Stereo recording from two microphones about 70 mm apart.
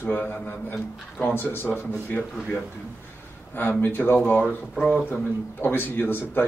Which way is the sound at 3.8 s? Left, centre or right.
Left.